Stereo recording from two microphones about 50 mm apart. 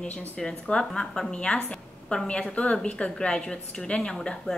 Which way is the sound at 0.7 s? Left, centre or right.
Centre.